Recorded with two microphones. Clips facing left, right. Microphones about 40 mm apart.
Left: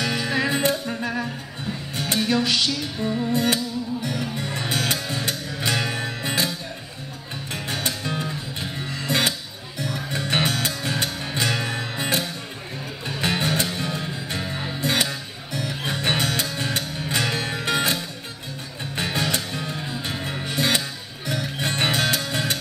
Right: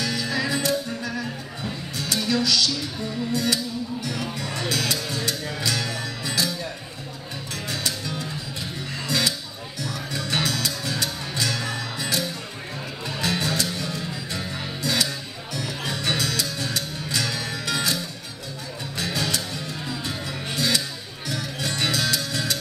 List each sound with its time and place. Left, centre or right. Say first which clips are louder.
0.0 s music: left 2 dB; left
7.5 s music: left 2 dB; left